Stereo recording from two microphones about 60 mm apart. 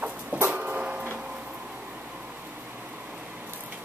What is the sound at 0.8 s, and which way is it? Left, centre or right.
Printer, centre.